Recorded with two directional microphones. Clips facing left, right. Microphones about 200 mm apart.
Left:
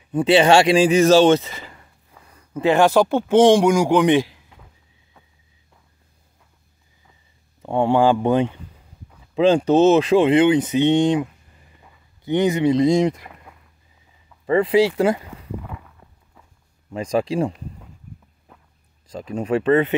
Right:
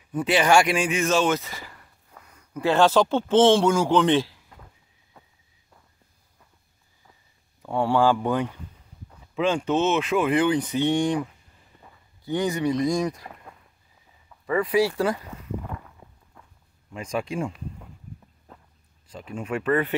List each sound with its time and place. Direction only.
0.1 s a man's voice: 25° left (ahead or behind)
7.6 s speech: 20° left (ahead or behind)
9.3 s speech: 35° left (ahead or behind)
12.3 s speech: 20° left (ahead or behind)
14.4 s speech: 30° left (ahead or behind)
15.6 s walk: centre (ahead or behind)
16.9 s speech: 35° left (ahead or behind)
19.0 s speech: 40° left (ahead or behind); by 20.0 s 25° left (ahead or behind)